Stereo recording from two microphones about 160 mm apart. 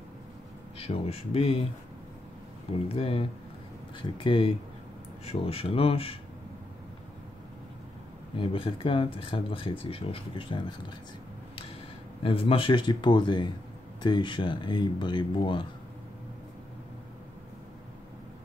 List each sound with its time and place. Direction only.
0.7 s speech: 40° left (ahead or behind)
2.7 s speech: 35° left (ahead or behind)
8.4 s speech: 35° left (ahead or behind)
12.2 s speech: 35° left (ahead or behind)